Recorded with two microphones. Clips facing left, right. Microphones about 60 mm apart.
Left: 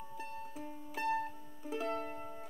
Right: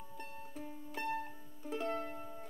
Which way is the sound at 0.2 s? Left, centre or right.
Centre.